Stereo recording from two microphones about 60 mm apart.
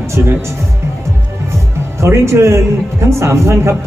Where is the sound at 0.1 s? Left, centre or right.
Right.